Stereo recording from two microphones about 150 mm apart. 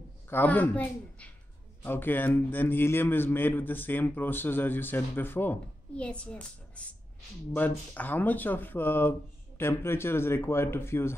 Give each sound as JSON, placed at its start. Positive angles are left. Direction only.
{"t": 0.3, "sound": "a man's voice", "side_deg": 10}